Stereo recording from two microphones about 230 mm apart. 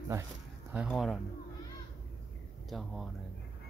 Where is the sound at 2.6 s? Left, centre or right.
Centre.